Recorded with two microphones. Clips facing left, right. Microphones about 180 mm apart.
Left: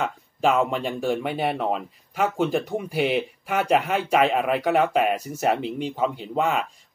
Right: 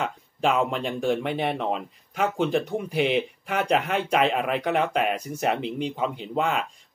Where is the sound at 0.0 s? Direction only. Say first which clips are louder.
Left 2 dB; centre (ahead or behind).